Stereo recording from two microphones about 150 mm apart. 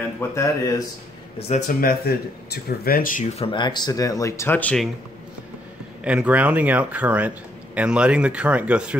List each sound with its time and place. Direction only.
0.3 s speech: 20° left (ahead or behind)
1.8 s speech: 85° left; by 3.3 s 65° left (ahead or behind)
3.3 s speech: 35° left (ahead or behind); by 4.8 s 10° left (ahead or behind)
6.0 s speech: 10° right (ahead or behind)